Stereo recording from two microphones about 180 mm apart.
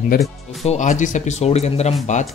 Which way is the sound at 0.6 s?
40° left (ahead or behind).